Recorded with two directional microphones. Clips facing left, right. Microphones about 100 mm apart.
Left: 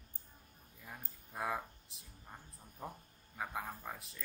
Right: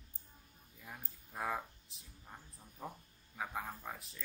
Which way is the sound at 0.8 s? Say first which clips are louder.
Even; centre (ahead or behind).